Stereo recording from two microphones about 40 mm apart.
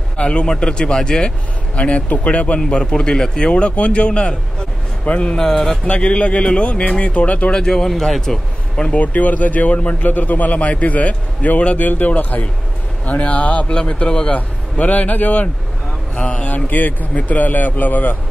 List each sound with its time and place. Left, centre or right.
0.2 s a man's voice: left
1.8 s a man's voice: left; by 5.8 s centre
5.9 s a man's voice: left
7.5 s speech: centre
7.9 s a man's voice: centre
8.9 s a man's voice: left
13.7 s a man's voice: left
14.8 s a man's voice: left
16.2 s a man's voice: left
16.4 s speech: left